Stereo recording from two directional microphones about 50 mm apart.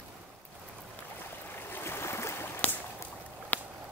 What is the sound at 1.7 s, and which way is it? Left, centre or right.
Boat, left.